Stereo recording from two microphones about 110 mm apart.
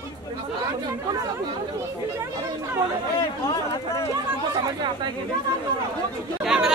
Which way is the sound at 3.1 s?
40° left (ahead or behind).